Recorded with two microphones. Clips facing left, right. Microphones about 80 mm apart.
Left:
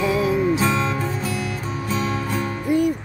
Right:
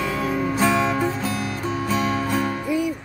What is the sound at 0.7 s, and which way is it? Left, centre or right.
Music, centre.